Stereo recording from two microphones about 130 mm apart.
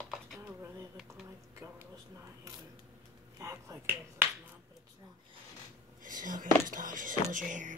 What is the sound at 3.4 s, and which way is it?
Finger snapping, 25° right (ahead or behind).